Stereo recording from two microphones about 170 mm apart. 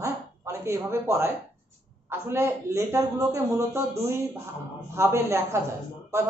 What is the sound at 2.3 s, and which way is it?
A woman's voice, 15° right (ahead or behind).